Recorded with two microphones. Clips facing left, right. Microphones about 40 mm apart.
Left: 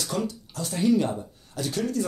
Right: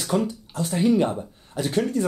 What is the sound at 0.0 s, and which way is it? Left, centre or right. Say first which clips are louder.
Speech: right 5 dB; right.